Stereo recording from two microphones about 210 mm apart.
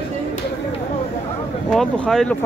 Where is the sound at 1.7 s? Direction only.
Centre (ahead or behind).